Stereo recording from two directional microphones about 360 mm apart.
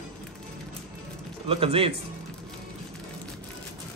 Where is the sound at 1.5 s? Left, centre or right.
Centre.